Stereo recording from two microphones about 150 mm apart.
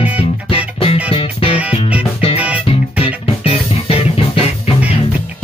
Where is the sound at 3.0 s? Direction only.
40° left (ahead or behind).